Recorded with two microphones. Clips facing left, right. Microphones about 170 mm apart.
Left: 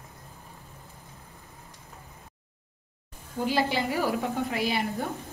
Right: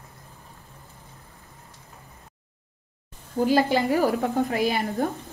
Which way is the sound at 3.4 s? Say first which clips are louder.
Right 6 dB; 45° right (ahead or behind).